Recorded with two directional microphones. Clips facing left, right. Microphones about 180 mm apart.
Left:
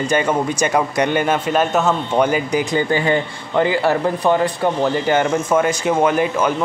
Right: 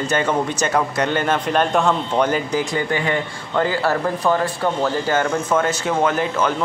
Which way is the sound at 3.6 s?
15° left (ahead or behind).